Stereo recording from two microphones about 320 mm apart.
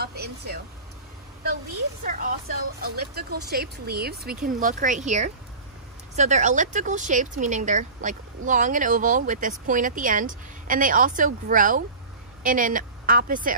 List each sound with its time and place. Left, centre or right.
0.0 s speech: right
2.0 s a woman's voice: right